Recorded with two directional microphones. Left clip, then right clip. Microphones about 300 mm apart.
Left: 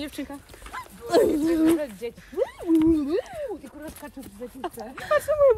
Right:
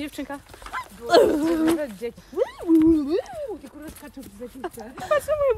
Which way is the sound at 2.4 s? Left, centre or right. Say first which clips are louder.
Right 2 dB; centre.